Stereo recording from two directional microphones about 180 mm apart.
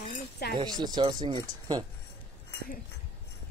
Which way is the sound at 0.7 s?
25° right (ahead or behind).